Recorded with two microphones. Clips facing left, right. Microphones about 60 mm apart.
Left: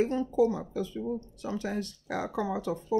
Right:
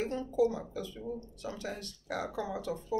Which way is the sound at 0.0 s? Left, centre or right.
Left.